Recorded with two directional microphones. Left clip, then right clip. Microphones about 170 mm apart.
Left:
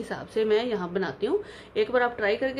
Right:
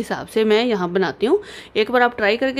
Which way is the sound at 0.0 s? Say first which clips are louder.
Right 7 dB; 55° right (ahead or behind).